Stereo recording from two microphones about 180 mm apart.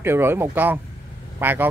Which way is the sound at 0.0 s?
10° right (ahead or behind).